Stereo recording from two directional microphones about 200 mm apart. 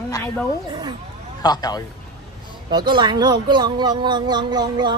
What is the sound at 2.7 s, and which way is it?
Speech, 20° right (ahead or behind).